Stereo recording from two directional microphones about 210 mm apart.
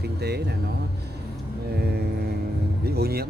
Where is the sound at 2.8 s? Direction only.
50° right (ahead or behind).